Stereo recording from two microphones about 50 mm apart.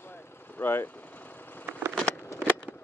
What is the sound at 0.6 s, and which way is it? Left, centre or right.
Speech, left.